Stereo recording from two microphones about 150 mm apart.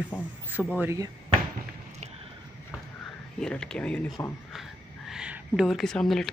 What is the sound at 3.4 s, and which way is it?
Speech, 5° left (ahead or behind).